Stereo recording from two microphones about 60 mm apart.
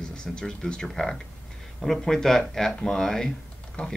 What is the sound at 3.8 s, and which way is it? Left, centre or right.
Speech, left.